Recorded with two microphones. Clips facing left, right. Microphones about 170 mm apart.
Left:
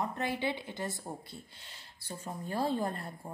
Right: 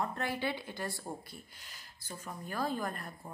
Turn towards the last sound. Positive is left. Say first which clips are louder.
# left 3 dB
turn(degrees=30)  # may be behind; listen again after turning